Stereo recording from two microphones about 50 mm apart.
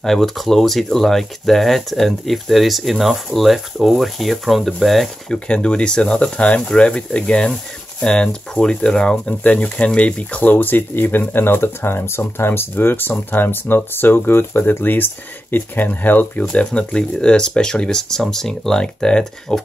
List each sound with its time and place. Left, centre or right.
0.0 s speech: centre
5.3 s speech: centre
9.4 s speech: left
10.5 s speech: left
16.5 s speech: left